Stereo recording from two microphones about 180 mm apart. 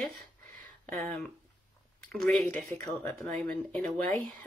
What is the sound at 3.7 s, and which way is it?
Speech, 5° left (ahead or behind).